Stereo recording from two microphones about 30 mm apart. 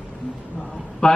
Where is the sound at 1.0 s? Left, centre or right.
Left.